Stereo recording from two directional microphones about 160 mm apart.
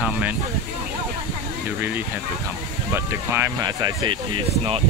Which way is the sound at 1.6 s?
10° right (ahead or behind).